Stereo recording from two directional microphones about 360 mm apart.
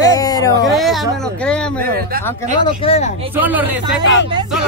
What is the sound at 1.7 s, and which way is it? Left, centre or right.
Speech, right.